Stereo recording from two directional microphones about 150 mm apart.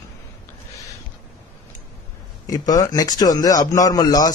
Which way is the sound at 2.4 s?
25° left (ahead or behind).